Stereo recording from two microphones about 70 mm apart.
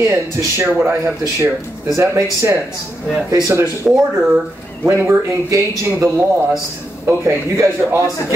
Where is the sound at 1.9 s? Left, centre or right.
Right.